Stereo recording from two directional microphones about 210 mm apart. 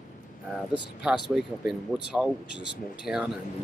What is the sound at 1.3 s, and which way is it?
Speech, 5° right (ahead or behind).